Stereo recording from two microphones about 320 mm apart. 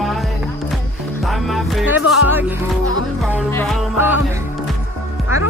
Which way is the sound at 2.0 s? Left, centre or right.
Left.